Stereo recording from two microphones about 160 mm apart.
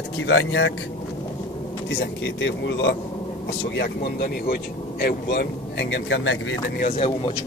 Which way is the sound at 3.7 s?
80° left.